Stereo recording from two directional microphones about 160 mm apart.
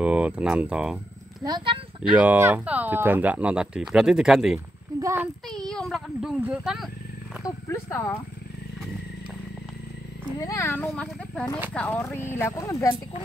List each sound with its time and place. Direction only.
0.0 s speech: 5° right (ahead or behind)
1.4 s speech: 30° right (ahead or behind)
2.1 s speech: 10° right (ahead or behind)
5.0 s child singing: 15° right (ahead or behind)
5.5 s a sound: 5° left (ahead or behind)
6.4 s speech: 5° right (ahead or behind)
7.4 s speech: 20° left (ahead or behind)
10.4 s speech: 20° left (ahead or behind)
10.9 s speech: 5° left (ahead or behind)